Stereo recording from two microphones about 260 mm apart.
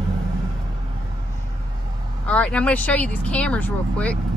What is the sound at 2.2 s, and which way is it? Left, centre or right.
Speech, centre.